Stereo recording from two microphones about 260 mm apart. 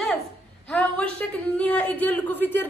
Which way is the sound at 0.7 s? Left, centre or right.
Centre.